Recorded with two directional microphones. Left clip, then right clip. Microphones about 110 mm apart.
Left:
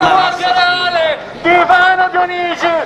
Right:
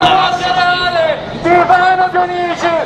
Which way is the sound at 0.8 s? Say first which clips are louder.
Right 1 dB; 25° left (ahead or behind).